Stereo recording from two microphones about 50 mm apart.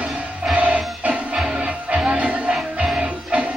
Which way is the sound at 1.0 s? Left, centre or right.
Centre.